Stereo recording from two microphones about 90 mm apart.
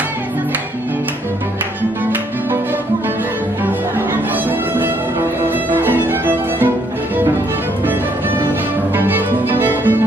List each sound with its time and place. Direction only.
3.6 s music: 20° right (ahead or behind)
8.9 s music: 20° right (ahead or behind)